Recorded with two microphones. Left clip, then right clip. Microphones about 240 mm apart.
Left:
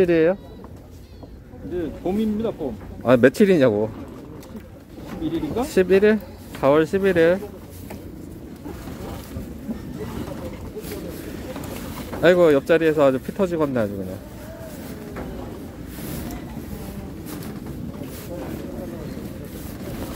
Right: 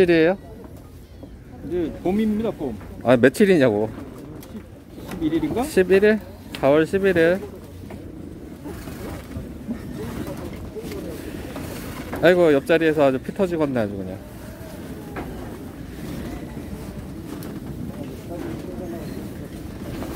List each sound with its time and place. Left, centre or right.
0.0 s speech: centre
1.8 s speech: right
3.0 s speech: centre
5.2 s speech: right
5.7 s speech: centre
12.2 s speech: centre